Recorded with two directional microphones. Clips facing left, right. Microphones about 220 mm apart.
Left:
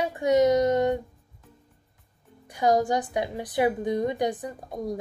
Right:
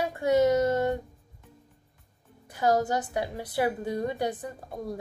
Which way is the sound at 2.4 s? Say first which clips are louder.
Left 2 dB; 15° left (ahead or behind).